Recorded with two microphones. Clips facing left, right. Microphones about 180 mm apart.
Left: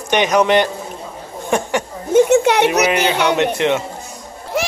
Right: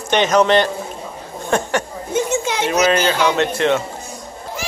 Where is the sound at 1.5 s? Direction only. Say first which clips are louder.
Left 1 dB; 15° left (ahead or behind).